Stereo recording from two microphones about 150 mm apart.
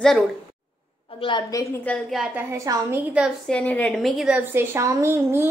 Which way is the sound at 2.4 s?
20° right (ahead or behind).